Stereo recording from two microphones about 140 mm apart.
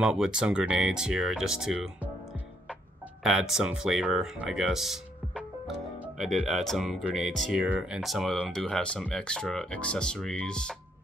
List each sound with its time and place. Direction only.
0.0 s speech: 5° right (ahead or behind)
3.3 s speech: 5° right (ahead or behind)